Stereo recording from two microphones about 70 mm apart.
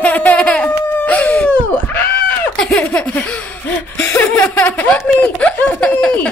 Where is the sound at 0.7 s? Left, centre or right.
Left.